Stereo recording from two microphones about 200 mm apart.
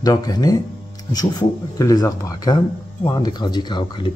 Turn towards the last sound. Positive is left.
turn(degrees=25)  # may be behind; listen again after turning